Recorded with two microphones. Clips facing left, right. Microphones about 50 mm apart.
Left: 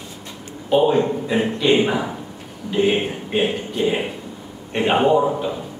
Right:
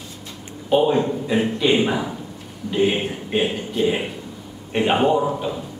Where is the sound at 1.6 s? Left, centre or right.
Centre.